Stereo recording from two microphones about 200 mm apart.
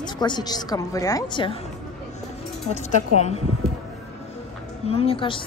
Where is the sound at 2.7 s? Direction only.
35° left (ahead or behind).